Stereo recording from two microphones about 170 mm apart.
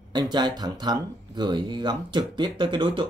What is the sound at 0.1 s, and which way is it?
Speech, 25° right (ahead or behind).